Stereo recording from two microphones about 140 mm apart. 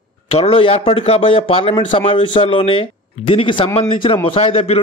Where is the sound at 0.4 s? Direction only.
40° left (ahead or behind).